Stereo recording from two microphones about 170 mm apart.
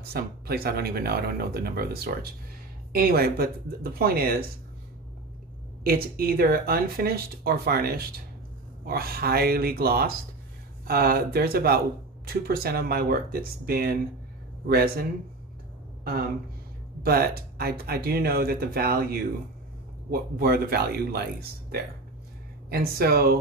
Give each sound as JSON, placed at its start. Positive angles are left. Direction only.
{"t": 0.0, "sound": "speech", "side_deg": -65}
{"t": 5.9, "sound": "speech", "side_deg": -60}